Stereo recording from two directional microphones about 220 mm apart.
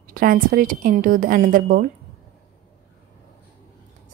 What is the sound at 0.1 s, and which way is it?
A woman's voice, 40° right (ahead or behind).